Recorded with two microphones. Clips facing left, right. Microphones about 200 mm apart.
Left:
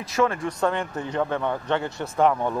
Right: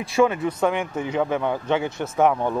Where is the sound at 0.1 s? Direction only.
10° right (ahead or behind).